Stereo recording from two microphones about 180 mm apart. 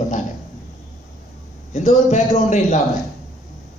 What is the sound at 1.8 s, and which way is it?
Speech, 40° left (ahead or behind).